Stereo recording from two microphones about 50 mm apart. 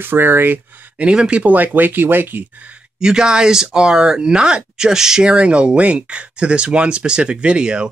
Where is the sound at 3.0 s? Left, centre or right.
Centre.